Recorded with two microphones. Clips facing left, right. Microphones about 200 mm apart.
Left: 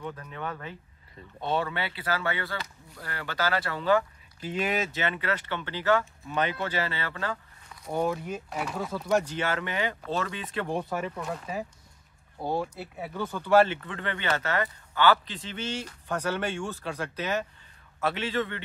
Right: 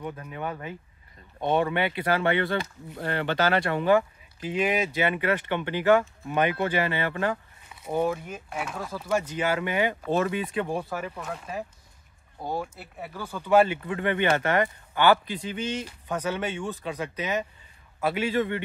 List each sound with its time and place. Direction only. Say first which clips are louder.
0.0 s speech: right 3 dB; 15° right (ahead or behind)
7.7 s speech: right 2 dB; 5° right (ahead or behind)